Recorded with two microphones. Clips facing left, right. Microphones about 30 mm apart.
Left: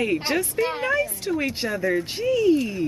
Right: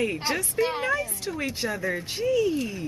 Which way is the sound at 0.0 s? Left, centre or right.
Centre.